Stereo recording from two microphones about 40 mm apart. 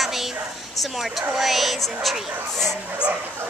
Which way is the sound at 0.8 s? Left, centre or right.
Centre.